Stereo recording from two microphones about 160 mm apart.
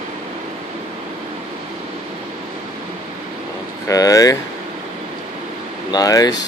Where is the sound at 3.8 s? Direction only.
20° left (ahead or behind).